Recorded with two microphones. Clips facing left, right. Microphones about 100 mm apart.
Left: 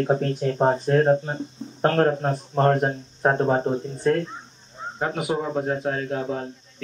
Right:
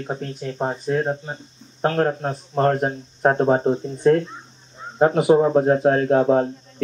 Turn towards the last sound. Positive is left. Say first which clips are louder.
# right 11 dB
turn(degrees=-45)  # may be behind; listen again after turning